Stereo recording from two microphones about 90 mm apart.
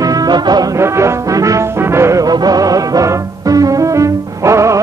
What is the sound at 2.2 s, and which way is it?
Music, 45° right (ahead or behind).